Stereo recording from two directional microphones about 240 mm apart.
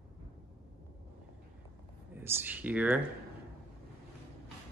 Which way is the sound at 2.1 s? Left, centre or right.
Centre.